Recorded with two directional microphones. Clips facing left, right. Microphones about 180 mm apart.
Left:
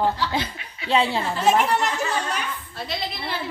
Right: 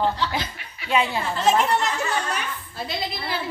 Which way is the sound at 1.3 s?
10° left (ahead or behind).